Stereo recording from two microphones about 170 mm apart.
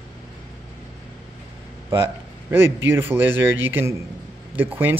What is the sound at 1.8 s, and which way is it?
A man's voice, 15° right (ahead or behind).